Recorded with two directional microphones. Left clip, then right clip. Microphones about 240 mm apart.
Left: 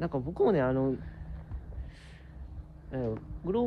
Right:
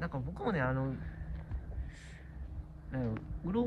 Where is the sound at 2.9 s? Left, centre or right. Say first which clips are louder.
Left 5 dB; left.